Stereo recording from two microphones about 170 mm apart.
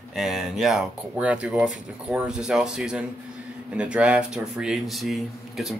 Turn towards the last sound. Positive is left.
turn(degrees=0)  # may be behind; listen again after turning